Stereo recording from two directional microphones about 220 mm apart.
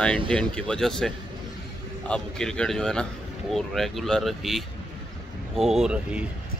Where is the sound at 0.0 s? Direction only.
5° left (ahead or behind).